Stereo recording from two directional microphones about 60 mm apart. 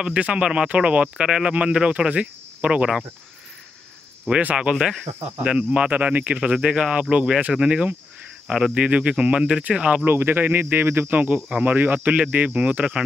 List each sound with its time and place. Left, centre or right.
0.0 s speech: centre
4.3 s speech: right
8.5 s speech: centre
8.7 s speech: centre
10.0 s speech: right
11.1 s speech: right